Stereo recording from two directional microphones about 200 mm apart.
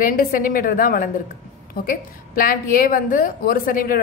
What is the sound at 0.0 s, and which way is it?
A woman's voice, 45° left (ahead or behind).